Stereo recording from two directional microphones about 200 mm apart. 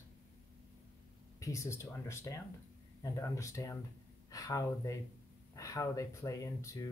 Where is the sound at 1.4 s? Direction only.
15° left (ahead or behind).